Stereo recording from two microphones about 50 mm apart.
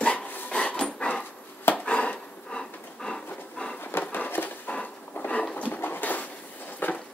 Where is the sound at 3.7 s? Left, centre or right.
Left.